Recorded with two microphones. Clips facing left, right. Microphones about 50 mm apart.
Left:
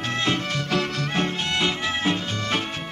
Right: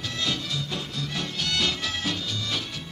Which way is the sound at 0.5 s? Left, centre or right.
Left.